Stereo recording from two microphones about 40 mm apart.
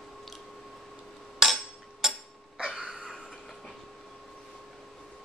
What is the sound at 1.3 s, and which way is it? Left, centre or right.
Hammer, centre.